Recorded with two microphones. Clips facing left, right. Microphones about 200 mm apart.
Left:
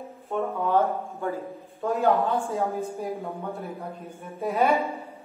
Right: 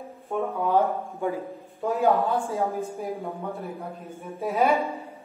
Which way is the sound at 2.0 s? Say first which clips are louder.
Right 1 dB; centre (ahead or behind).